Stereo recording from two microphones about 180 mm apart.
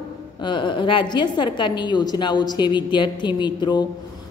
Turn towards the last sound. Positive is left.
turn(degrees=25)  # may be behind; listen again after turning